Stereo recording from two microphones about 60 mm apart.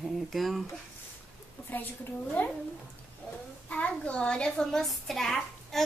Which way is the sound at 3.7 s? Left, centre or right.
Centre.